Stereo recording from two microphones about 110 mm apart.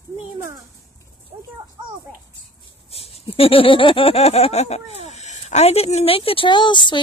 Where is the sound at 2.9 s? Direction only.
65° left (ahead or behind).